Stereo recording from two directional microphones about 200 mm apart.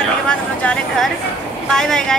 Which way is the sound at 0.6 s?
5° left (ahead or behind).